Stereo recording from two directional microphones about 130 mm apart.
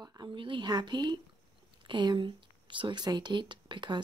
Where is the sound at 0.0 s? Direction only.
30° right (ahead or behind).